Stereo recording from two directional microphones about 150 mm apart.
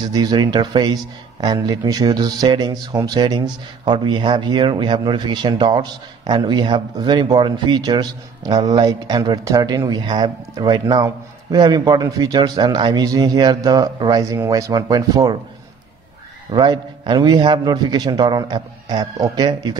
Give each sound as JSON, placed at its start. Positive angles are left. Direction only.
{"t": 0.1, "sound": "speech", "side_deg": -25}
{"t": 16.5, "sound": "speech", "side_deg": -30}